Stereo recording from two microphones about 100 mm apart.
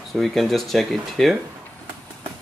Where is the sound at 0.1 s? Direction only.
Centre (ahead or behind).